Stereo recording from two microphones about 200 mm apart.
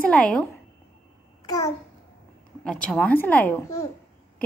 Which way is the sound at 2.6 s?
5° left (ahead or behind).